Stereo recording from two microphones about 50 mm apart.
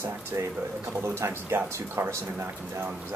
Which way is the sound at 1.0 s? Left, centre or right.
Right.